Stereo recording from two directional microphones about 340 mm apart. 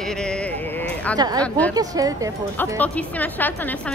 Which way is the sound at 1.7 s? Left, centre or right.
Centre.